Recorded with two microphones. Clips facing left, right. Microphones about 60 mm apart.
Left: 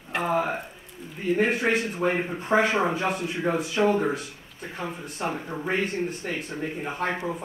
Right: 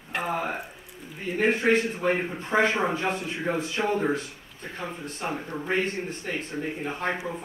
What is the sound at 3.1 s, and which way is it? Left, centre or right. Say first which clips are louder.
Speech: left 2 dB; centre.